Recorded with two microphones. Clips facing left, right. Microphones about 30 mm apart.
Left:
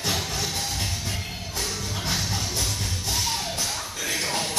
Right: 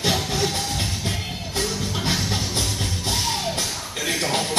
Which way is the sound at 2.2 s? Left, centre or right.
Right.